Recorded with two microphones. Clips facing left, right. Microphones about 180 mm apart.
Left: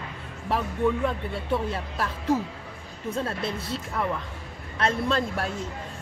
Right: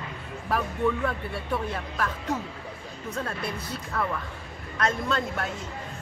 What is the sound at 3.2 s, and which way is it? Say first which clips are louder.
Speech: left 3 dB; 25° left (ahead or behind).